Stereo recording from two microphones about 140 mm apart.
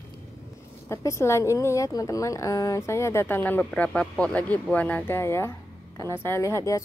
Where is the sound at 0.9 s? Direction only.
20° left (ahead or behind).